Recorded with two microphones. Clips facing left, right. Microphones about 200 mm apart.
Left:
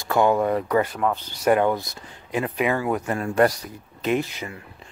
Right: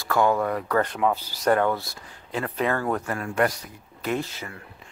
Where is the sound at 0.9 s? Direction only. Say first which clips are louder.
Even; 5° right (ahead or behind).